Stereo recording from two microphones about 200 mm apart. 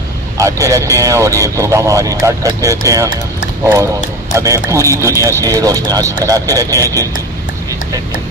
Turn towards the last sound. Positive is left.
turn(degrees=-15)  # may be behind; listen again after turning